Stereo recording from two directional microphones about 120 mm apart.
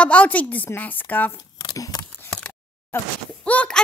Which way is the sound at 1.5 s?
35° left (ahead or behind).